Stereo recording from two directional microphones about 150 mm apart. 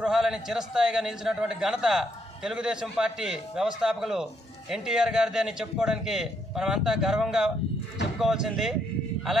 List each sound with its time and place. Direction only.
0.0 s a man's voice: 5° right (ahead or behind)